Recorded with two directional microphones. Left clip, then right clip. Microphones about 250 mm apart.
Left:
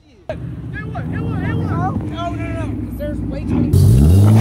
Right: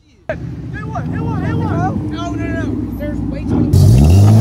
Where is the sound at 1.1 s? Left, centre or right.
Centre.